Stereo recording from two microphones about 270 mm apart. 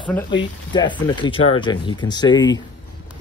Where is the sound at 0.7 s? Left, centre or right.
Centre.